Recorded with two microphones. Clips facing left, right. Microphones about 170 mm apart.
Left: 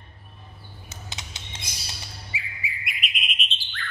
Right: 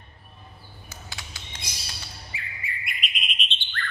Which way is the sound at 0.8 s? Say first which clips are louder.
Left 1 dB; 20° left (ahead or behind).